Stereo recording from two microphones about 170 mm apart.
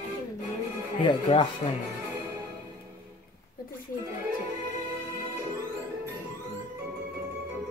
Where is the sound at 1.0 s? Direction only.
30° left (ahead or behind).